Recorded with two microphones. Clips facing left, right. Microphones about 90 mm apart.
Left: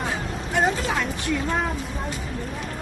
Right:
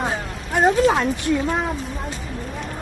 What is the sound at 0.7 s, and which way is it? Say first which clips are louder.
Speech: right 8 dB; 40° right (ahead or behind).